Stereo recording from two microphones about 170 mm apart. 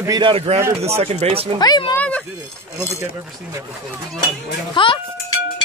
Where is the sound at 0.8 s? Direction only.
35° right (ahead or behind).